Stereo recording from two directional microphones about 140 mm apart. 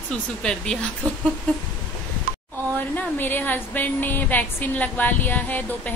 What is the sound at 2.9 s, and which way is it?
A woman's voice, 15° left (ahead or behind).